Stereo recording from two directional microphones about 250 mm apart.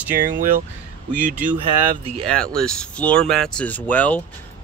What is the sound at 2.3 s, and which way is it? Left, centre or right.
Speech, centre.